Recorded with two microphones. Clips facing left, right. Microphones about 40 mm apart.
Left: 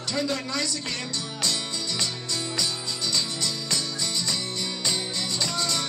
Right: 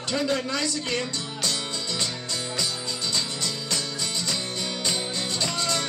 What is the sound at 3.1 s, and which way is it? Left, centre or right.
Music, right.